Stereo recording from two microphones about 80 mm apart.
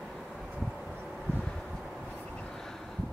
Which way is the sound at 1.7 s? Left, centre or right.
Centre.